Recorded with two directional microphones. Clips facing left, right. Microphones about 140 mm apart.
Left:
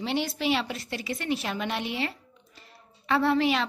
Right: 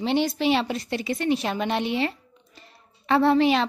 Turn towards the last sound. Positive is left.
turn(degrees=-25)  # may be behind; listen again after turning